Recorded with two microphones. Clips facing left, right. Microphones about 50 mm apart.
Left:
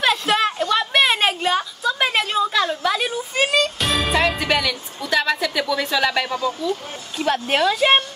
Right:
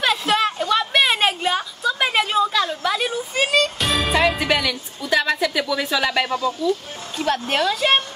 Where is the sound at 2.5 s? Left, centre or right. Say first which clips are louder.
Left 1 dB; centre.